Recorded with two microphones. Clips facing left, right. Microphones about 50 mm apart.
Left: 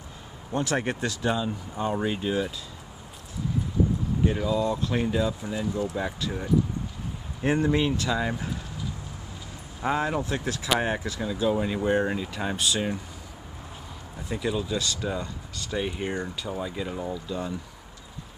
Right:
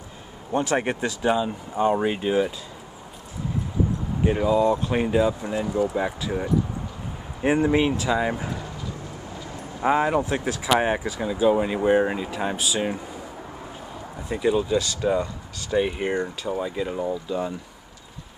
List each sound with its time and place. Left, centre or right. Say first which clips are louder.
0.5 s speech: right 4 dB; right
4.2 s speech: right 6 dB; right
5.9 s speech: right 5 dB; centre
9.8 s speech: right 6 dB; centre
14.3 s speech: right 7 dB; centre
16.0 s speech: right 5 dB; centre